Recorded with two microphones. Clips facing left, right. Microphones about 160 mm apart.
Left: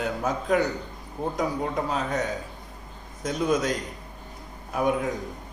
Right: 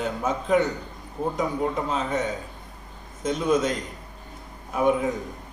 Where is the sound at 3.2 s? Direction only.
Centre (ahead or behind).